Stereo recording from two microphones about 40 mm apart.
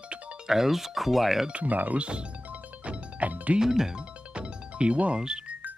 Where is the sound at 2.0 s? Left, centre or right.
Right.